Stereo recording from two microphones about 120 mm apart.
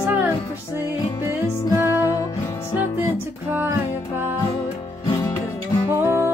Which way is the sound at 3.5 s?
15° right (ahead or behind).